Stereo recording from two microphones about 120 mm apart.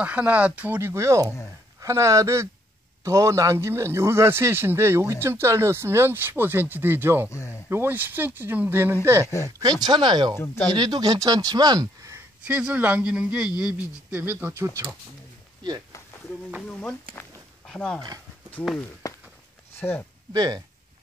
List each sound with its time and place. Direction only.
0.0 s a man's voice: 10° right (ahead or behind)
7.2 s speech: 25° left (ahead or behind)
7.7 s a man's voice: 15° right (ahead or behind)
9.6 s speech: 35° right (ahead or behind)
12.4 s speech: 10° right (ahead or behind)
17.6 s speech: 5° left (ahead or behind)
19.0 s a sound: 30° left (ahead or behind)
19.8 s speech: 20° left (ahead or behind)
20.3 s speech: 35° right (ahead or behind)